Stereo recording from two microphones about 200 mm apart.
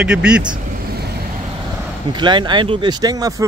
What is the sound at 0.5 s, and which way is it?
Vehicle, 55° right (ahead or behind).